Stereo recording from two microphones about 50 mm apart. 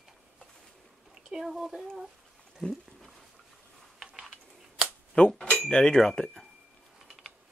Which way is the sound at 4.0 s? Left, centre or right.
Centre.